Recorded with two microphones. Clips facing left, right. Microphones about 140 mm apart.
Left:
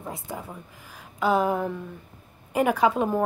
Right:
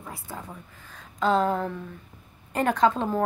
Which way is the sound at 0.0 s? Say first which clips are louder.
Left 4 dB; 20° left (ahead or behind).